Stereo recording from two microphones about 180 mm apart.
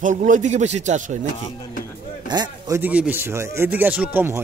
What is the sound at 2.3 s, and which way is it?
Speech, 25° right (ahead or behind).